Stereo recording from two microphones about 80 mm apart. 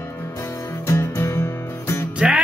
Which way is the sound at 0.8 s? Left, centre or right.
Left.